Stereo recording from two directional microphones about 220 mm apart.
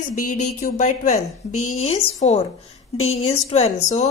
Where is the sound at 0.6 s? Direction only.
35° left (ahead or behind).